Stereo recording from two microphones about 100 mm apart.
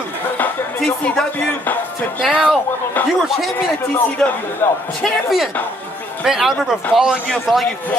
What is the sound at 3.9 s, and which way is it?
Speech, 20° left (ahead or behind).